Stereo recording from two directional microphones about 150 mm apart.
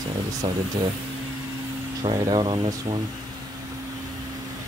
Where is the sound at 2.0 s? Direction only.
25° right (ahead or behind).